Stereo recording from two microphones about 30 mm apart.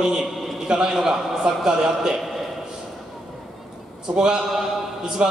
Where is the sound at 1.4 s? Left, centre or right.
Right.